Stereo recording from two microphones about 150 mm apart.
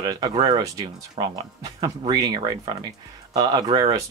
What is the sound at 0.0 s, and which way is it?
Speech, 30° right (ahead or behind).